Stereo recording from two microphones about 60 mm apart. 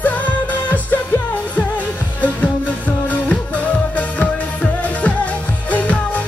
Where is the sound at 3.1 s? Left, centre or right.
Left.